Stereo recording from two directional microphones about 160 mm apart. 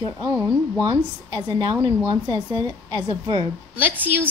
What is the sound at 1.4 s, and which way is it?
A woman's voice, 25° right (ahead or behind).